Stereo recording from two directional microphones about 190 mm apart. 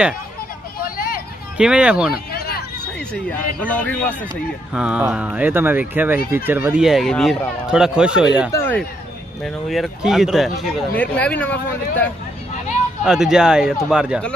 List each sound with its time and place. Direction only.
0.8 s vehicle: 50° left (ahead or behind)
1.6 s speech: 5° right (ahead or behind)
2.3 s a sound: 55° left (ahead or behind)
3.1 s a man's voice: 5° left (ahead or behind)
4.7 s speech: 5° right (ahead or behind)
8.5 s speech: 10° left (ahead or behind)
9.4 s a man's voice: centre (ahead or behind)
13.0 s speech: 5° right (ahead or behind)